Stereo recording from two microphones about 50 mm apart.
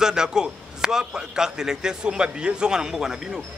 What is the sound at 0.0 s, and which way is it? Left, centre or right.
A man's voice, centre.